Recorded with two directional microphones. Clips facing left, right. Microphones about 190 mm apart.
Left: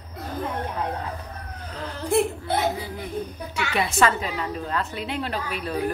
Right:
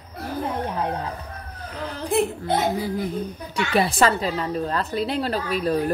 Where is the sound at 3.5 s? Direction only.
35° right (ahead or behind).